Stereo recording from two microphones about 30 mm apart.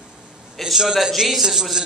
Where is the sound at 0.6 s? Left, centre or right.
Centre.